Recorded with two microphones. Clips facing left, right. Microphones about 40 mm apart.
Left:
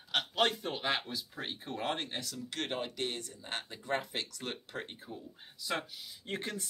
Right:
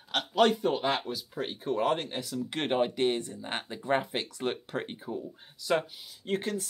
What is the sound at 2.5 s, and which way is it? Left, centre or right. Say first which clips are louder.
Speech: right 9 dB; right.